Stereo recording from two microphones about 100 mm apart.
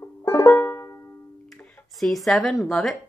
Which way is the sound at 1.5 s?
Centre (ahead or behind).